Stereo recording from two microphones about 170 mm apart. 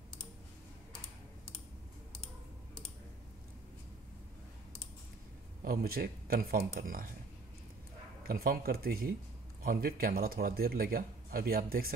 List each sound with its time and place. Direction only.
5.6 s speech: 60° right (ahead or behind)
8.3 s speech: 60° right (ahead or behind)